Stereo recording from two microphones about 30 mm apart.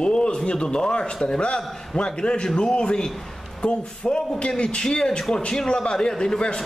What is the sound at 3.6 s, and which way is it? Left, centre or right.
A man's voice, left.